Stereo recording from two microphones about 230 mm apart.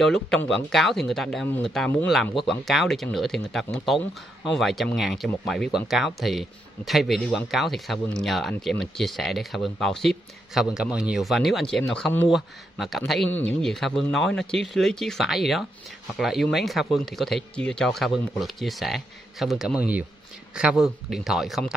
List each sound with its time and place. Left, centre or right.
0.0 s speech: centre